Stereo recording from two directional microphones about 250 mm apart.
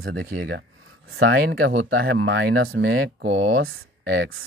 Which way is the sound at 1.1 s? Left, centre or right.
Right.